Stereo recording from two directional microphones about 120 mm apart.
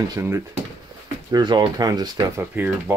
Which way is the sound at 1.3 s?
35° right (ahead or behind).